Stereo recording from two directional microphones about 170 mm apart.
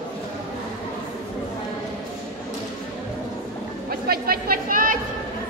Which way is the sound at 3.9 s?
60° right (ahead or behind).